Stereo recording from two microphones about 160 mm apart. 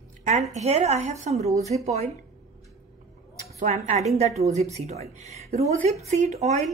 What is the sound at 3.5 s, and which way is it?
A woman's voice, 45° right (ahead or behind).